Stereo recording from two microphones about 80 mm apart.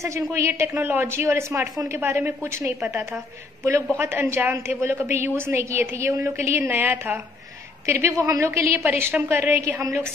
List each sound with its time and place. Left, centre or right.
0.0 s a woman's voice: right
8.8 s a woman's voice: right